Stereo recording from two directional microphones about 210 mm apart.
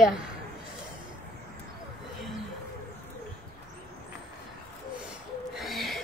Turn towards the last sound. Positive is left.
turn(degrees=0)  # may be behind; listen again after turning